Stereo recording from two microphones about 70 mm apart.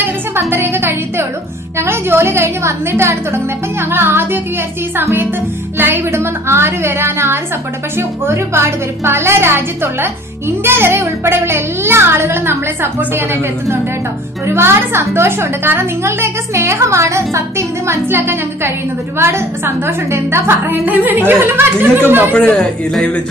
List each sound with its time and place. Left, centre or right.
0.0 s a woman's voice: right
5.8 s a woman's voice: right
10.6 s a woman's voice: right
20.8 s a woman's voice: right
22.3 s speech: centre